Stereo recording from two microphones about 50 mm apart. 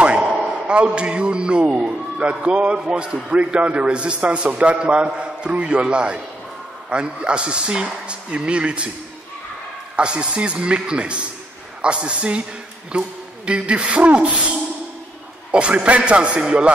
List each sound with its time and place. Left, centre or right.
0.0 s a man's voice: right
9.9 s a man's voice: centre
15.5 s a man's voice: right